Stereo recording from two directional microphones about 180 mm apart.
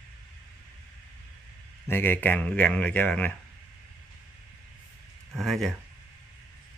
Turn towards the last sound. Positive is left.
turn(degrees=0)  # may be behind; listen again after turning